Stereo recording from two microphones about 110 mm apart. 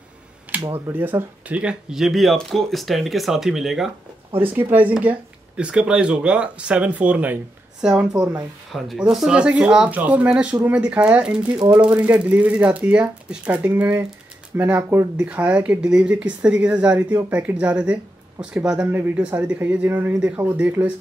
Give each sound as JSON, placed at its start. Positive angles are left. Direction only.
{"t": 0.5, "sound": "a sound", "side_deg": -15}
{"t": 0.8, "sound": "speech", "side_deg": -20}
{"t": 4.5, "sound": "speech", "side_deg": -15}